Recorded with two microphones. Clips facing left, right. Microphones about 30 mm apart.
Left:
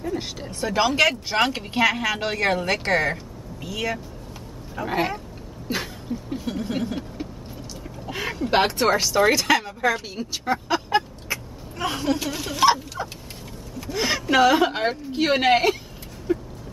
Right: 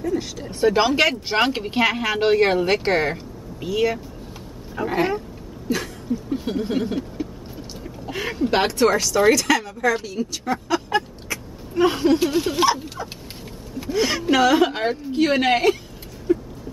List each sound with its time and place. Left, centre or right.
0.1 s speech: centre
0.6 s speech: centre
4.8 s a woman's voice: centre
5.7 s speech: left
6.3 s a sound: centre
7.2 s vehicle: centre
8.1 s speech: centre
8.7 s a woman's voice: centre
10.0 s a sound: centre
11.7 s speech: centre
13.9 s a woman's voice: centre
16.3 s a sound: centre